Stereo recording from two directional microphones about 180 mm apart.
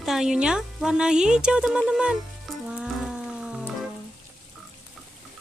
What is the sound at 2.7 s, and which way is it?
Music, 5° right (ahead or behind).